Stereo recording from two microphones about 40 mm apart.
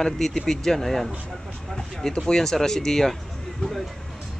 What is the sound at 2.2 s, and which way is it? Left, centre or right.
Speech, centre.